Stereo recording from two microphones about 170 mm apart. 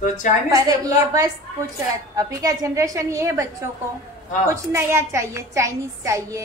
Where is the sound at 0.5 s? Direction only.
20° right (ahead or behind).